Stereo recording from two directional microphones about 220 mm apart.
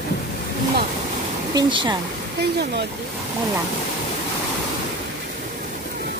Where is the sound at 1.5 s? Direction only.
20° right (ahead or behind).